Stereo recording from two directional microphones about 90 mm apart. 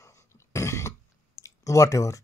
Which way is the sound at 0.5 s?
35° left (ahead or behind).